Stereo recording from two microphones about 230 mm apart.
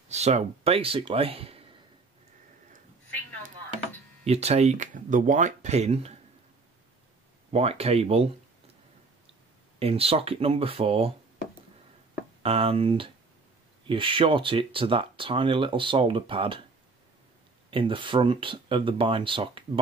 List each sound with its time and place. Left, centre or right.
0.1 s speech: right
4.2 s speech: right
7.5 s speech: right
9.8 s speech: right
12.4 s speech: right
17.6 s speech: right